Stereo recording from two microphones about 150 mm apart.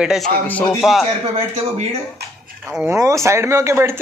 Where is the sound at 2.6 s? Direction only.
15° right (ahead or behind).